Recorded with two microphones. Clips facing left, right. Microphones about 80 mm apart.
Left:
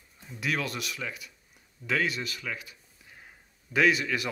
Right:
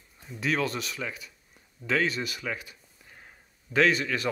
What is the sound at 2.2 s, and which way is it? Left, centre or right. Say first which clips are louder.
A man's voice: right 3 dB; centre.